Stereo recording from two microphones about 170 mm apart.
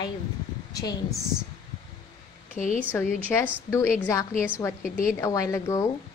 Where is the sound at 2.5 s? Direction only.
50° left (ahead or behind).